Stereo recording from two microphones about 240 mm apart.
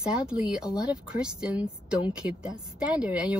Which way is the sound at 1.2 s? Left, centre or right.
Centre.